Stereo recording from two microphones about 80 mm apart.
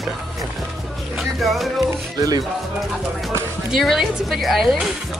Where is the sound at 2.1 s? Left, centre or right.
Right.